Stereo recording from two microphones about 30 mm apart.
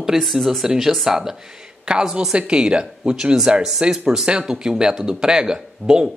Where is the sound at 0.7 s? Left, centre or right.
Centre.